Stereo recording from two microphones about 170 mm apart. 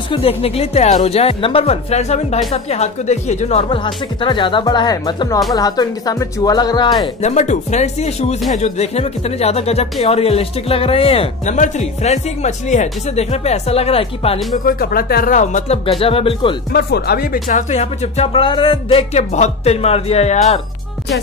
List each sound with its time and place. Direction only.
0.1 s speech: 35° left (ahead or behind)
7.2 s speech: 45° left (ahead or behind)
14.6 s speech: 60° left (ahead or behind)
15.8 s speech: 35° left (ahead or behind)
16.7 s speech: 70° left (ahead or behind); by 20.6 s 40° left (ahead or behind)